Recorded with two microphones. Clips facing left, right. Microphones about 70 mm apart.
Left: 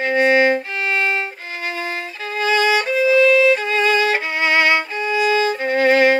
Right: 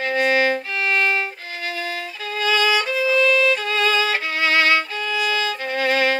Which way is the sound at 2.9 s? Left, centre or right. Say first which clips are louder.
Left 8 dB; centre.